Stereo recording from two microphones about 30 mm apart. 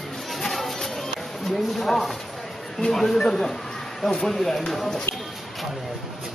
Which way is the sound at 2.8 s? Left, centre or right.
Centre.